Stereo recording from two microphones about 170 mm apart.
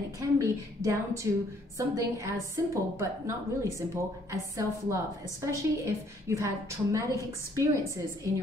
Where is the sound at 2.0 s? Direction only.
15° right (ahead or behind).